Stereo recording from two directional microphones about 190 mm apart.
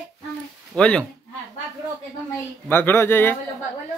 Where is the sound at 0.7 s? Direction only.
5° left (ahead or behind).